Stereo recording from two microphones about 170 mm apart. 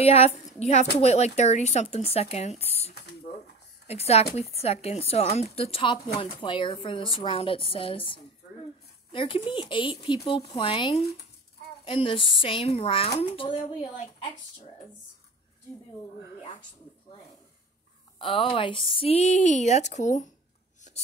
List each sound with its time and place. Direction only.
0.0 s speech: 35° left (ahead or behind)
2.6 s a sound: 35° left (ahead or behind)
3.8 s speech: 40° left (ahead or behind)
18.2 s speech: 30° left (ahead or behind)